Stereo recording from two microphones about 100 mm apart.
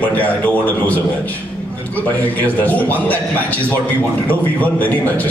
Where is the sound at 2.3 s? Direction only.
15° left (ahead or behind).